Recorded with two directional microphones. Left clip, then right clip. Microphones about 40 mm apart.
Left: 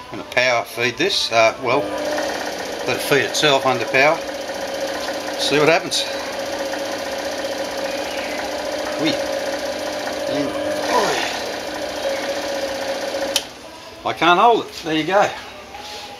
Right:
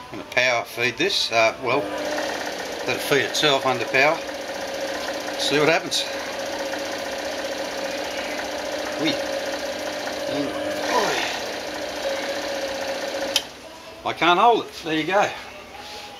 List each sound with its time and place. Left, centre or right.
0.3 s speech: left
2.0 s sewing machine: centre
2.9 s speech: left
5.4 s speech: left
6.3 s engine: centre
9.1 s sewing machine: centre
10.3 s a sound: centre
10.8 s wood: centre
11.1 s sewing machine: centre
14.0 s speech: centre